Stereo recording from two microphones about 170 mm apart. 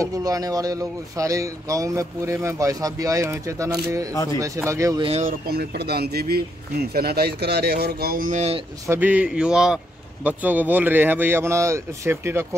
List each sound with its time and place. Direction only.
0.0 s speech: 20° right (ahead or behind)
4.1 s speech: 20° left (ahead or behind)
4.6 s speech: 20° right (ahead or behind)
5.5 s speech: 65° right (ahead or behind); by 8.6 s 40° right (ahead or behind)
8.8 s speech: 15° right (ahead or behind)